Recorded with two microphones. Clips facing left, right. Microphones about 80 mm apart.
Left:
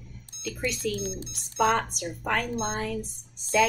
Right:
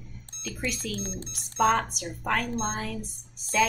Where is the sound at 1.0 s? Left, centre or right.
Right.